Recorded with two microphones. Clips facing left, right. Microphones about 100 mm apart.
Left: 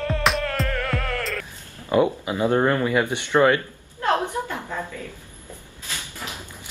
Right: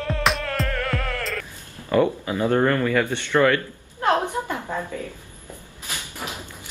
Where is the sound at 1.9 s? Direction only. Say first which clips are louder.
Even; 15° left (ahead or behind).